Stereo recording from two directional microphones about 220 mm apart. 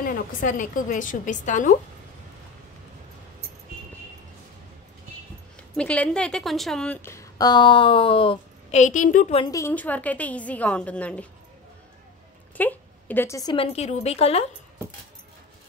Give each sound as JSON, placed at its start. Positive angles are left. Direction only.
{"t": 0.0, "sound": "a woman's voice", "side_deg": 35}
{"t": 5.8, "sound": "a woman's voice", "side_deg": 5}
{"t": 9.5, "sound": "a woman's voice", "side_deg": 10}
{"t": 12.5, "sound": "a woman's voice", "side_deg": 10}